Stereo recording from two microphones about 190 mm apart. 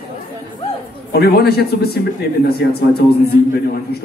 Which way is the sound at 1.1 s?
55° left (ahead or behind).